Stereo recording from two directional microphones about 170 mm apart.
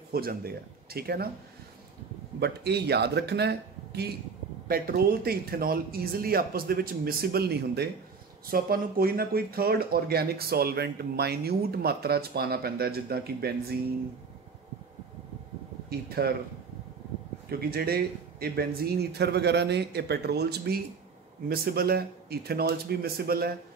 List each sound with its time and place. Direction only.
0.1 s speech: 65° right (ahead or behind)
2.4 s a man's voice: 75° right (ahead or behind)
4.6 s speech: 60° right (ahead or behind)
8.5 s speech: 60° right (ahead or behind)
15.9 s a man's voice: 65° right (ahead or behind)
17.5 s a man's voice: 65° right (ahead or behind)